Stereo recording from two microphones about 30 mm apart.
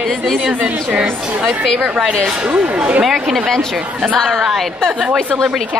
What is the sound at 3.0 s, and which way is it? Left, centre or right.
Speech, centre.